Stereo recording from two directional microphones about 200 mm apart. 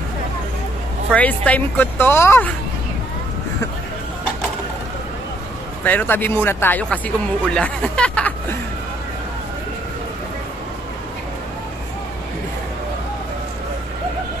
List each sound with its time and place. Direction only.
1.1 s speech: 5° left (ahead or behind)
5.9 s speech: 10° left (ahead or behind)